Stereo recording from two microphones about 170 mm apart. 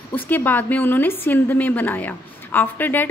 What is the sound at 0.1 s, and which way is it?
A woman's voice, 10° left (ahead or behind).